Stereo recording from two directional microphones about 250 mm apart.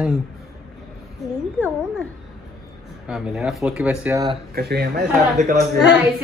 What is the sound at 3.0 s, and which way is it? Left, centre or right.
A woman's voice, centre.